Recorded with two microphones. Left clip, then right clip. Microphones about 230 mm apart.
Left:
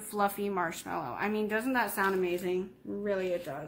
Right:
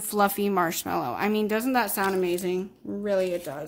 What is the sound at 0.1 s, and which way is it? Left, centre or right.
A woman's voice, right.